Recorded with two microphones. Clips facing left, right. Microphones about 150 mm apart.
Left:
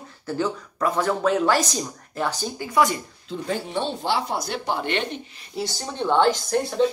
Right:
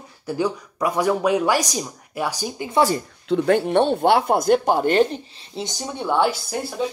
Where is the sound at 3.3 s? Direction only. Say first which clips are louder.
Right 10 dB; 65° right (ahead or behind).